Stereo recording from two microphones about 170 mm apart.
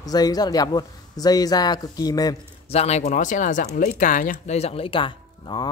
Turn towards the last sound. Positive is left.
turn(degrees=30)  # may be behind; listen again after turning